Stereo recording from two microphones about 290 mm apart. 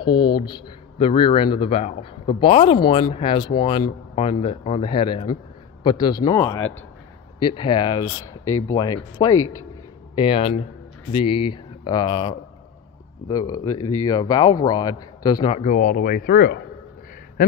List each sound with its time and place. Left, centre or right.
0.0 s speech: centre
8.0 s speech: left
8.7 s speech: centre
9.3 s speech: left
10.1 s speech: centre
13.7 s speech: left
14.0 s speech: centre; by 16.6 s left